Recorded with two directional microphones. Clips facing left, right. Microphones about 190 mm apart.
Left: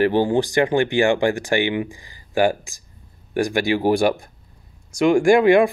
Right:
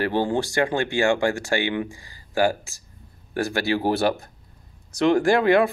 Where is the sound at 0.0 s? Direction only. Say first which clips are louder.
Left 5 dB; 15° left (ahead or behind).